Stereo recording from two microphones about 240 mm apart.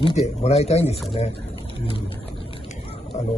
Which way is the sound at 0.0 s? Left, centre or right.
Left.